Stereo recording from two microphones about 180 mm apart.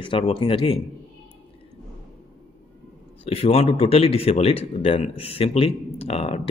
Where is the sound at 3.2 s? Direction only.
30° left (ahead or behind).